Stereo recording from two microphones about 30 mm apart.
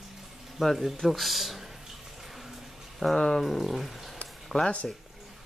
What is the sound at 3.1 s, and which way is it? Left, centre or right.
Speech, left.